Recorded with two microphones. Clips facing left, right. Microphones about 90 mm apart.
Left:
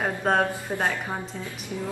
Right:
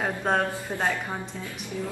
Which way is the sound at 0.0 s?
Centre (ahead or behind).